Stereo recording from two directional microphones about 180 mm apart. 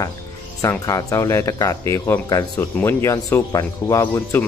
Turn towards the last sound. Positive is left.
turn(degrees=15)  # may be behind; listen again after turning